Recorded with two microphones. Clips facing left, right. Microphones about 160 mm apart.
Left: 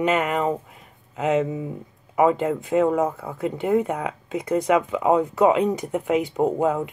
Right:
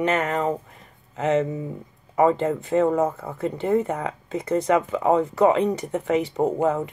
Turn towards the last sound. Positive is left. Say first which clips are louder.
# even
turn(degrees=10)  # may be behind; listen again after turning